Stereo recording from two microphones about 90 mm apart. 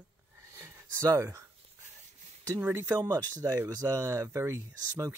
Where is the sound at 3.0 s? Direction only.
40° right (ahead or behind).